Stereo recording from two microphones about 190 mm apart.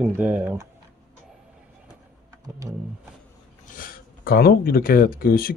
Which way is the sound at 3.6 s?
45° left (ahead or behind).